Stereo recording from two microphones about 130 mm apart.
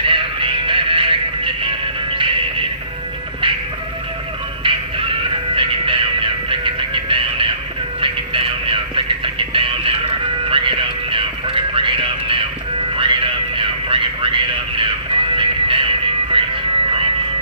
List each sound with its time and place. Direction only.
0.0 s music: 40° right (ahead or behind)
4.6 s music: 40° right (ahead or behind)